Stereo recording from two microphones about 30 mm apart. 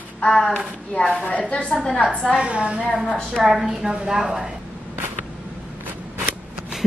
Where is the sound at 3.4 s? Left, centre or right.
Centre.